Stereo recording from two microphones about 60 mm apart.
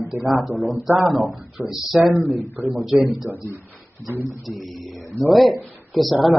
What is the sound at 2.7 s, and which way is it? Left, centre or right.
Speech, centre.